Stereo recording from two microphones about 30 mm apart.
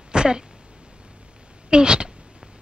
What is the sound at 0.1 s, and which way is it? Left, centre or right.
Throat clearing, right.